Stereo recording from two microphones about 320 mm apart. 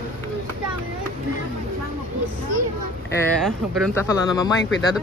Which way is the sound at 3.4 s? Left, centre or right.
Centre.